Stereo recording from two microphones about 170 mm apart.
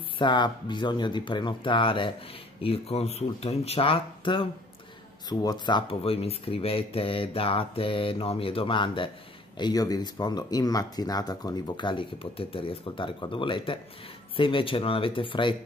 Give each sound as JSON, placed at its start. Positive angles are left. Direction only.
{"t": 0.2, "sound": "speech", "side_deg": 25}